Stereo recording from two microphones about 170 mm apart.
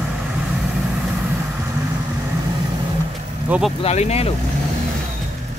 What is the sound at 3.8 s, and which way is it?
Speech, 40° left (ahead or behind).